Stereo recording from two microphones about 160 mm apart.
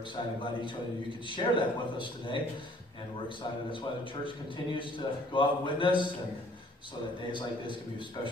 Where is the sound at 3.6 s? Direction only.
30° left (ahead or behind).